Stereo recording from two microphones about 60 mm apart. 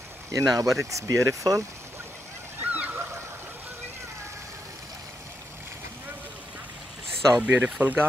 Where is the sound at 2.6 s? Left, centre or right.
Right.